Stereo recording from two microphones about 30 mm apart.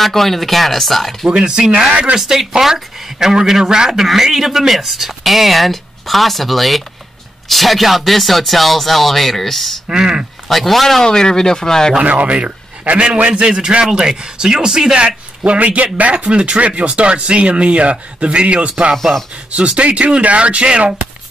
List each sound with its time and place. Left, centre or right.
0.0 s speech: centre
1.3 s speech: right
1.9 s a man's voice: right
2.1 s speech: centre
4.0 s speech: centre
9.8 s speech: right
10.5 s speech: centre
11.1 s speech: left
12.0 s speech: right
12.9 s speech: right
15.0 s a man's voice: right
16.3 s a man's voice: right